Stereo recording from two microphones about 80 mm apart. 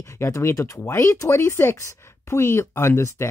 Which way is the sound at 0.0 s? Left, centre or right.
Left.